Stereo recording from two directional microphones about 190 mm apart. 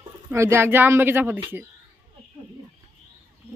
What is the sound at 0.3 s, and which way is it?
Speech, 15° right (ahead or behind).